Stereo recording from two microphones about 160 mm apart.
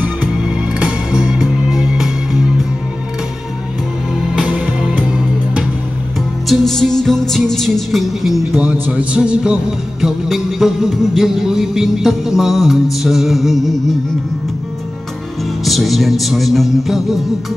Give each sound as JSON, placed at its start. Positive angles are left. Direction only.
{"t": 0.0, "sound": "music", "side_deg": -10}
{"t": 4.4, "sound": "music", "side_deg": -10}
{"t": 6.5, "sound": "music", "side_deg": 0}
{"t": 8.8, "sound": "speech", "side_deg": -5}
{"t": 10.0, "sound": "music", "side_deg": 0}
{"t": 15.6, "sound": "music", "side_deg": 0}